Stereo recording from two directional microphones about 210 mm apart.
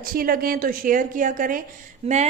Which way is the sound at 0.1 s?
45° right (ahead or behind).